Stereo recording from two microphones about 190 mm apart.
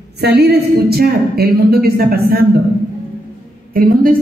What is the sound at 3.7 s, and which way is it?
Speech, 45° right (ahead or behind).